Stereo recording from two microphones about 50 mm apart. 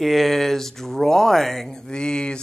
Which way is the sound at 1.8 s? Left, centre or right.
Centre.